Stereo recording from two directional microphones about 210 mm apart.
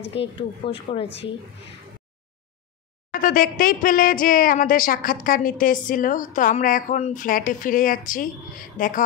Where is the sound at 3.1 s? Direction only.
40° left (ahead or behind).